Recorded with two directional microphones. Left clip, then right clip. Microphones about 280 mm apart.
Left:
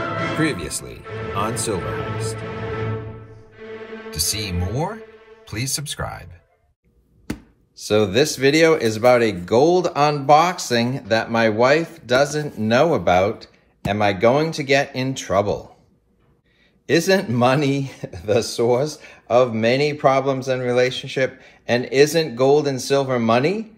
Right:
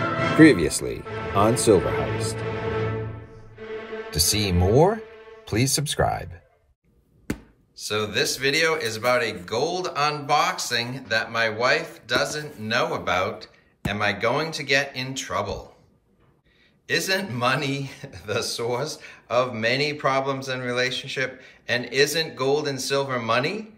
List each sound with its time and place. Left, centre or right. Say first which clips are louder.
0.0 s music: right 5 dB; centre
1.0 s speech: right 3 dB; centre
2.3 s music: right 1 dB; centre
4.7 s speech: right 10 dB; right
7.2 s speech: left 1 dB; centre
16.8 s speech: left 6 dB; centre